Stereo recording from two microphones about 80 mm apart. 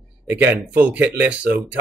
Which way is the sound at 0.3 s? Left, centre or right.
Centre.